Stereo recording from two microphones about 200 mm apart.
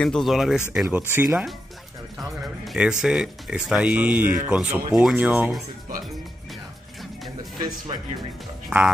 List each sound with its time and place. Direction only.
0.0 s speech: centre (ahead or behind)
7.5 s speech: 20° right (ahead or behind)
8.6 s speech: 5° right (ahead or behind)